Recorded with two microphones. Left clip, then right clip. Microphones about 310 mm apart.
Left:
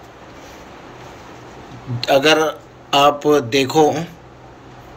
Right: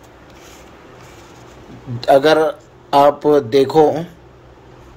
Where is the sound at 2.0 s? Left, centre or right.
Centre.